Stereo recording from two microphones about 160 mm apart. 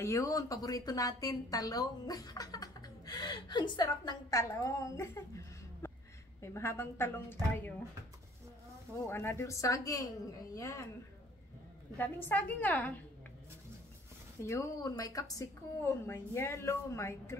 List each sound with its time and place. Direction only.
0.0 s a woman's voice: 20° left (ahead or behind)
9.0 s a woman's voice: 15° left (ahead or behind)
12.0 s a woman's voice: 10° left (ahead or behind)
14.4 s a woman's voice: 20° left (ahead or behind)